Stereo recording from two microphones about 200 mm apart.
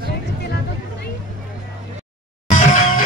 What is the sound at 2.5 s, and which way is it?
Music, 40° left (ahead or behind).